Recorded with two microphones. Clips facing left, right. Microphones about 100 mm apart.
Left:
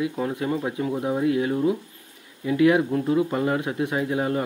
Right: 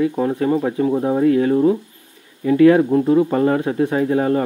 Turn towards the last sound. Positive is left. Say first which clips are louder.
# right 7 dB
turn(degrees=-40)  # may be behind; listen again after turning